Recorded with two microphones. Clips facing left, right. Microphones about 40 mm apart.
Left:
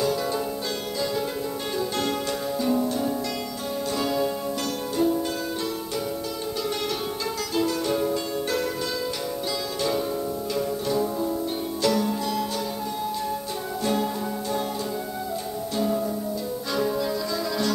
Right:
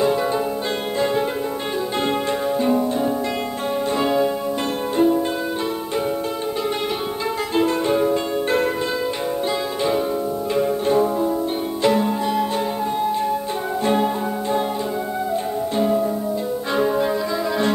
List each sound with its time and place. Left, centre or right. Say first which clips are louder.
0.0 s music: right 6 dB; right
2.6 s music: right 3 dB; right
7.5 s music: right 6 dB; right
10.5 s music: right 8 dB; right
13.8 s music: right 6 dB; right
15.8 s music: right 5 dB; right